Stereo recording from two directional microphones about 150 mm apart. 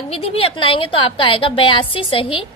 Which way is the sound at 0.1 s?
40° left (ahead or behind).